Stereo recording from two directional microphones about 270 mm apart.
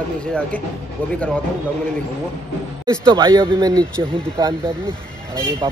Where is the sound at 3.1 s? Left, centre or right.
Centre.